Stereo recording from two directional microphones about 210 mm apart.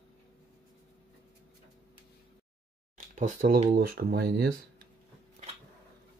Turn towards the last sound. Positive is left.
turn(degrees=-45)  # may be behind; listen again after turning